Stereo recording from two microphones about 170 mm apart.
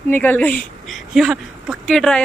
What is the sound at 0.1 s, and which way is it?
A woman's voice, 10° left (ahead or behind).